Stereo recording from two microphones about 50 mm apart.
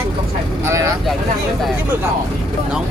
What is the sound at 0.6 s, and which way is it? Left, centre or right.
Speech, right.